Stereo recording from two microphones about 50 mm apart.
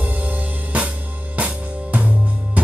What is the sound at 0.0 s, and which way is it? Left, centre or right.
Music, right.